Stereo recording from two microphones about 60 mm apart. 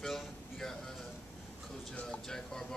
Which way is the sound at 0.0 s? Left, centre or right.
Centre.